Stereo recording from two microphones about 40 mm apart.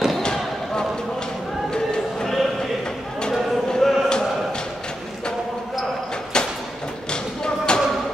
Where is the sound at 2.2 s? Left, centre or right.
Centre.